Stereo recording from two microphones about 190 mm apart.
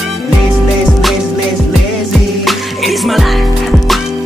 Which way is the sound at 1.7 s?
Centre (ahead or behind).